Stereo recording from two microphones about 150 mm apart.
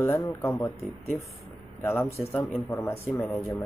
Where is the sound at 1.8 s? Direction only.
15° left (ahead or behind).